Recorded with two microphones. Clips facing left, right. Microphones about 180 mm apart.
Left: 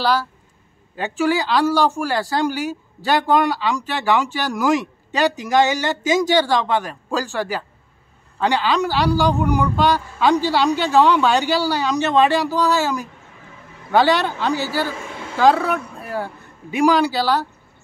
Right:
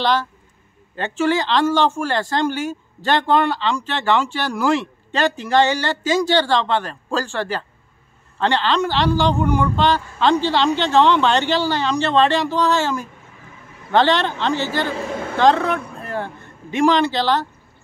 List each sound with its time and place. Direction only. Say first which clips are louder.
0.0 s speech: even; 5° left (ahead or behind)